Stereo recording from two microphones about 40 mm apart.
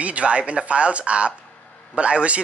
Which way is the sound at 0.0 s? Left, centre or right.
Right.